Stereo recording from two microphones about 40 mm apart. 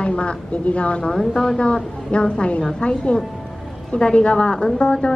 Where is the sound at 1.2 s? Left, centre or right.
Centre.